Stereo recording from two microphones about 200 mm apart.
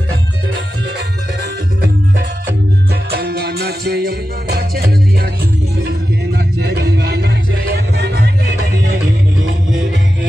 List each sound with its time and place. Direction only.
0.9 s music: 55° right (ahead or behind)
3.1 s music: 50° right (ahead or behind)